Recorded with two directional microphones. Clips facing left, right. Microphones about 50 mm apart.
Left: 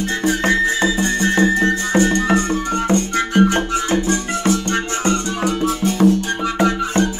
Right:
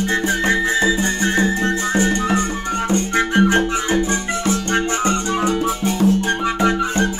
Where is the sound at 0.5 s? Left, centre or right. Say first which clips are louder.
Even; right.